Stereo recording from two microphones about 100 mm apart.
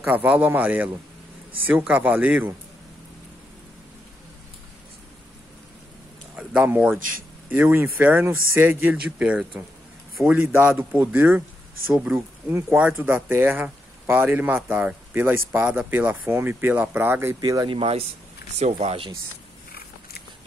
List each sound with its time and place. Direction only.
0.0 s a man's voice: 15° right (ahead or behind)
6.3 s a man's voice: 15° right (ahead or behind)
17.4 s speech: 40° right (ahead or behind)
17.6 s speech: 70° right (ahead or behind)